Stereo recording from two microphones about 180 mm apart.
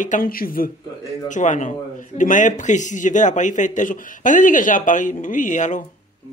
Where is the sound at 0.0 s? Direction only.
50° left (ahead or behind).